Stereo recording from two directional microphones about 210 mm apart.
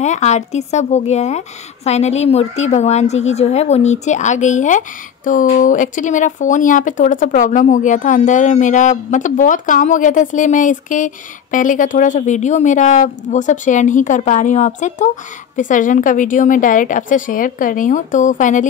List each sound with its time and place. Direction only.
0.0 s a woman's voice: 35° left (ahead or behind)